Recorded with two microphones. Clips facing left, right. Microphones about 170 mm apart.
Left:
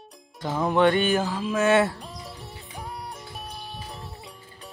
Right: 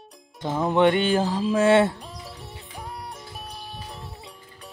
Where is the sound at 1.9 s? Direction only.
Centre (ahead or behind).